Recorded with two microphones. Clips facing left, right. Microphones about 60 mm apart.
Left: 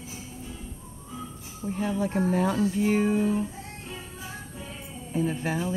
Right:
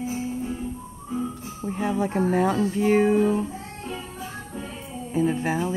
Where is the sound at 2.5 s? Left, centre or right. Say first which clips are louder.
Right 4 dB; right.